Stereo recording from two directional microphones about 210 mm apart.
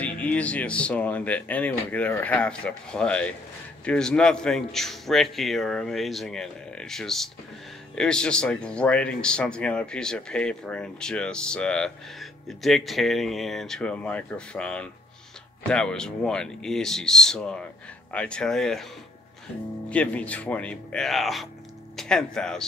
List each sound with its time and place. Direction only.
0.0 s speech: 5° left (ahead or behind)
19.9 s speech: 5° left (ahead or behind)